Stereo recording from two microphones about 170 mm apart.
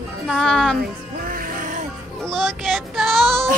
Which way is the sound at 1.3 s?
55° right (ahead or behind).